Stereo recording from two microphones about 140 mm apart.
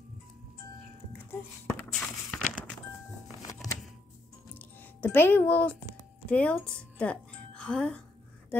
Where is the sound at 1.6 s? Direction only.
10° left (ahead or behind).